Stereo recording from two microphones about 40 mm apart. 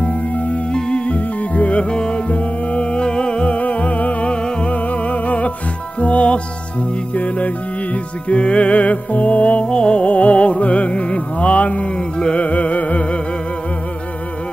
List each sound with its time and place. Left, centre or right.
0.7 s music: left
1.1 s music: left
1.8 s music: left
9.7 s music: left